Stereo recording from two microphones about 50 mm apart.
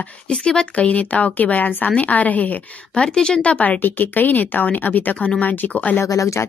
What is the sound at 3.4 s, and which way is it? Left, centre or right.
Speech, left.